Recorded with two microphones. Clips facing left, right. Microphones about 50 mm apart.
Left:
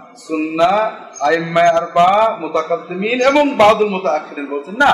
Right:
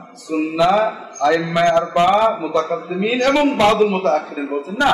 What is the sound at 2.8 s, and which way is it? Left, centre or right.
Speech, left.